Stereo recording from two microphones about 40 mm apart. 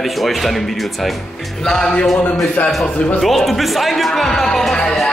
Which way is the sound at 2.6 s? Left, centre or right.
Left.